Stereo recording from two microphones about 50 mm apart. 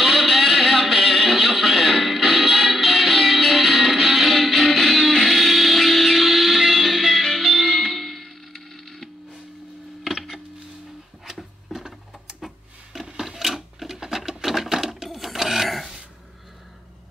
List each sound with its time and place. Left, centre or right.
0.0 s music: centre
10.0 s a sound: centre
13.2 s sewing machine: centre